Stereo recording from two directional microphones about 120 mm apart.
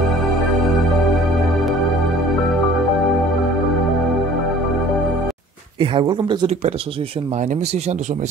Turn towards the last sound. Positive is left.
turn(degrees=-40)  # may be behind; listen again after turning